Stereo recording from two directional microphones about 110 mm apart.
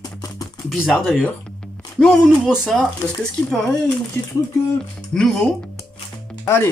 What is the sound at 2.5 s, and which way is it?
Speech, 5° right (ahead or behind).